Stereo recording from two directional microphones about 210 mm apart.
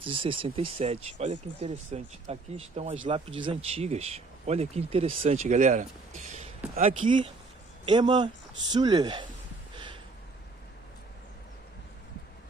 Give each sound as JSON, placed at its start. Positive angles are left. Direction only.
{"t": 0.0, "sound": "speech", "side_deg": -25}
{"t": 7.8, "sound": "speech", "side_deg": -20}